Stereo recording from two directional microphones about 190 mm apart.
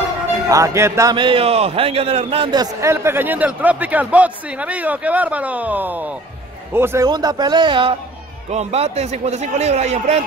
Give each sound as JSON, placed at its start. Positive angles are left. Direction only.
{"t": 0.5, "sound": "a man's voice", "side_deg": -15}